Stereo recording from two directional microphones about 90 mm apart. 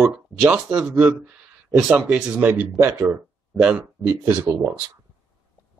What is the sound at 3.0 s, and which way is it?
Speech, 15° right (ahead or behind).